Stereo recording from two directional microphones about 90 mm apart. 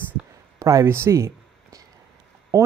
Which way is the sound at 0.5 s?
35° right (ahead or behind).